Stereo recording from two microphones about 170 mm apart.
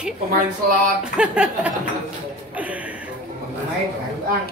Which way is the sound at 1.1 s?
5° right (ahead or behind).